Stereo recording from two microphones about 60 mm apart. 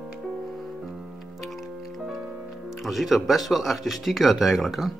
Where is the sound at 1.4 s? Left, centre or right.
Centre.